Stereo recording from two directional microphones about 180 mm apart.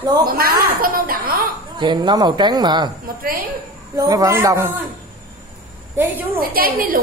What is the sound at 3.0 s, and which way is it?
Speech, 55° right (ahead or behind).